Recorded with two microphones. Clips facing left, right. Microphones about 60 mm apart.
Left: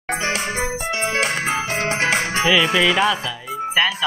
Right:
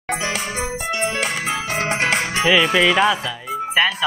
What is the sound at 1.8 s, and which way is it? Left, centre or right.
Music, right.